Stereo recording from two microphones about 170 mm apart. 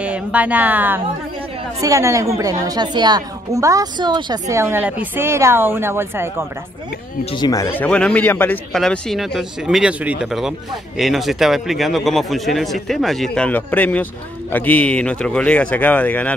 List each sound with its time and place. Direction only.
0.0 s a woman's voice: 5° right (ahead or behind)
7.3 s a man's voice: 20° left (ahead or behind)